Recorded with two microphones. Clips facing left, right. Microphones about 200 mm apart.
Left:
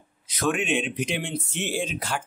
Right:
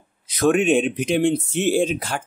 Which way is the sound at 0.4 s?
45° right (ahead or behind).